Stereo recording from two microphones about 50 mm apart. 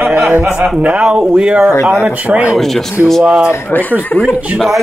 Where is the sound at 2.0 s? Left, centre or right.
Right.